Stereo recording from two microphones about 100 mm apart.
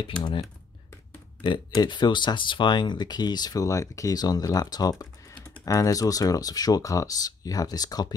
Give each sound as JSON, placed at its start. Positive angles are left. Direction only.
{"t": 0.2, "sound": "speech", "side_deg": 60}